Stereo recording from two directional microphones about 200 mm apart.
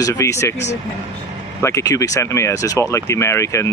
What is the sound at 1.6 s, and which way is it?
Speech, 15° left (ahead or behind).